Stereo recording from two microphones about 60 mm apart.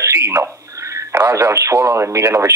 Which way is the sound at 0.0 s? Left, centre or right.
Right.